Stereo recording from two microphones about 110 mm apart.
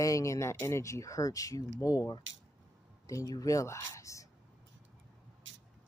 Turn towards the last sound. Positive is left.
turn(degrees=30)  # may be behind; listen again after turning